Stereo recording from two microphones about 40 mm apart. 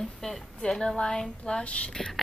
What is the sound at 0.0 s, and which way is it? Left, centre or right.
A woman's voice, centre.